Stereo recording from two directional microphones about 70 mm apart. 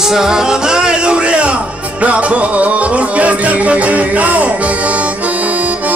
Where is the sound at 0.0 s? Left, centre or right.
Centre.